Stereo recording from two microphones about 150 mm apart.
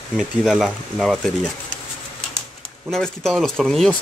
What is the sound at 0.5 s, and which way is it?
Speech, centre (ahead or behind).